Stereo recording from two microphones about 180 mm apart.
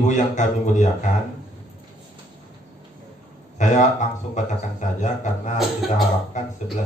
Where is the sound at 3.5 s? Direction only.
40° left (ahead or behind).